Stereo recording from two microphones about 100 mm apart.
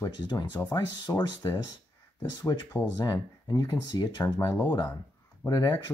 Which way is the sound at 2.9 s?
45° left (ahead or behind).